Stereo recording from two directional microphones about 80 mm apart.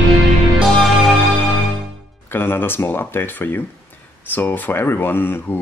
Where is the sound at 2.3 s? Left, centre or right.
Left.